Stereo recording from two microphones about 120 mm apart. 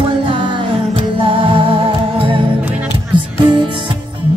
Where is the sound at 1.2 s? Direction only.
50° right (ahead or behind).